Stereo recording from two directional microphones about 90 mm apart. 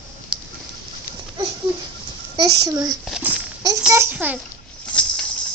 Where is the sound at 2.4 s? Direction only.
45° right (ahead or behind).